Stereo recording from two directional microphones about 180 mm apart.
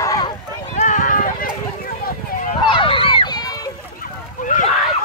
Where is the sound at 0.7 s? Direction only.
45° left (ahead or behind).